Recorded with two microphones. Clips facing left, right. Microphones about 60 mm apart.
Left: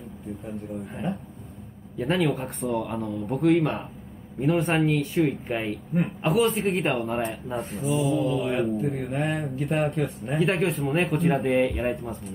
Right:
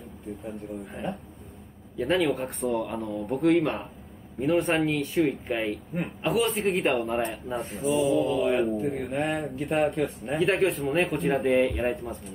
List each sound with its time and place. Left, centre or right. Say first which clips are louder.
0.4 s a man's voice: left 2 dB; centre